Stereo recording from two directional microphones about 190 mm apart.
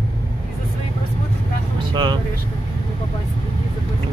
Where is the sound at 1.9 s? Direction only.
25° right (ahead or behind).